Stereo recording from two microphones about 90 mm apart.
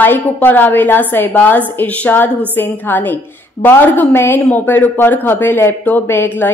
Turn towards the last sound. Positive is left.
turn(degrees=20)  # may be behind; listen again after turning